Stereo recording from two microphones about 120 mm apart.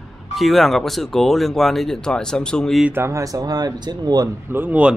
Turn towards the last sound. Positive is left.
turn(degrees=-15)  # may be behind; listen again after turning